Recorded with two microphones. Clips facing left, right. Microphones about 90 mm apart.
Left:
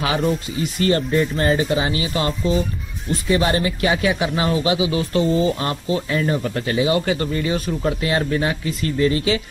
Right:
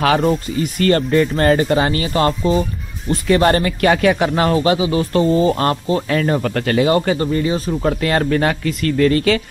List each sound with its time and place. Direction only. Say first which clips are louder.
0.2 s speech: right 4 dB; 45° right (ahead or behind)
6.4 s speech: right 4 dB; 60° right (ahead or behind)
6.9 s speech: right 4 dB; 40° right (ahead or behind)
7.9 s speech: right 4 dB; 50° right (ahead or behind)